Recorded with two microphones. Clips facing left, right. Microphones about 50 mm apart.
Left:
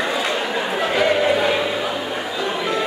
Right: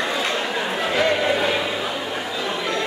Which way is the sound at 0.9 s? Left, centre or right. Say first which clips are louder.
Left 2 dB; centre.